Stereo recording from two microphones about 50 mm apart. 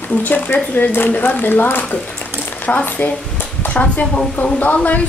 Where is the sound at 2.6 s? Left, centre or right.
Left.